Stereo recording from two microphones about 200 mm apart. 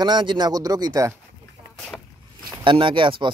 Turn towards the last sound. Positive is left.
turn(degrees=-25)  # may be behind; listen again after turning